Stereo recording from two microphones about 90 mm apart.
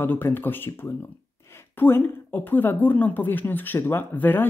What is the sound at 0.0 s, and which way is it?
A woman's voice, 25° left (ahead or behind).